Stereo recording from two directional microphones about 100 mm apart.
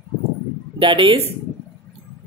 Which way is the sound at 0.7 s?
55° right (ahead or behind).